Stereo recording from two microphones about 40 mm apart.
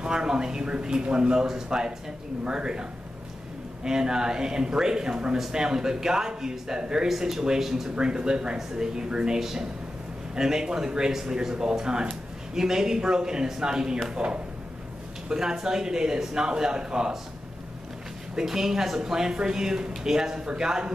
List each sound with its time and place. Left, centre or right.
0.0 s a man's voice: centre
7.9 s a man's voice: right
18.3 s speech: centre